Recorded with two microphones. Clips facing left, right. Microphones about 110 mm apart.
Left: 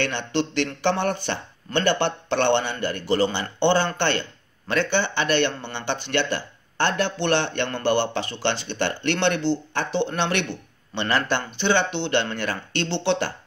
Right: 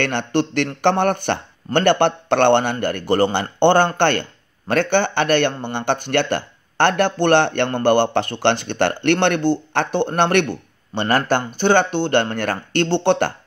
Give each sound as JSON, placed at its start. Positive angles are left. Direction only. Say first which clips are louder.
{"t": 0.0, "sound": "speech", "louder": "right 5 dB", "side_deg": -55}